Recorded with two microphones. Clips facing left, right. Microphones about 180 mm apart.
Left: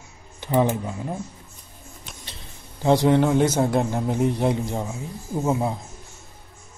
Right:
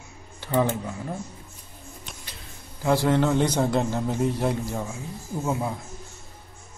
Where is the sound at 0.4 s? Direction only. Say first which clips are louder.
Left 3 dB; 20° left (ahead or behind).